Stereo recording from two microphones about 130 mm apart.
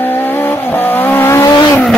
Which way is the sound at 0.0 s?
15° left (ahead or behind).